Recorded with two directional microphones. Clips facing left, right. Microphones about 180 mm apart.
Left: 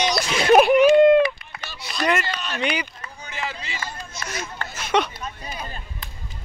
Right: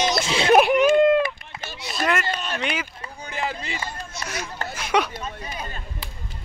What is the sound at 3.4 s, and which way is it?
Speech, 55° right (ahead or behind).